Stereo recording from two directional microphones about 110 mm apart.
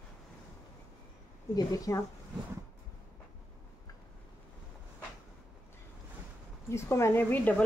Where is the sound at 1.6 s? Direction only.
35° left (ahead or behind).